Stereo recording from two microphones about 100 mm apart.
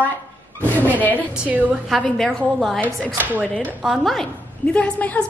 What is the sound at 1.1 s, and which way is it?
Speech, 15° right (ahead or behind).